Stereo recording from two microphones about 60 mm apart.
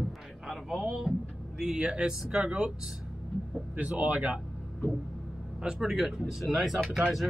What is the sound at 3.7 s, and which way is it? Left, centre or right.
Speech, right.